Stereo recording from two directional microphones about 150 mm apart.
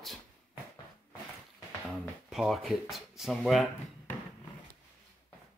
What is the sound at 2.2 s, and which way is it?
Speech, centre (ahead or behind).